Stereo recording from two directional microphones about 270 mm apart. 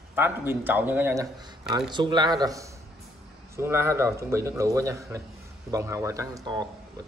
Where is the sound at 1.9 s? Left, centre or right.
Centre.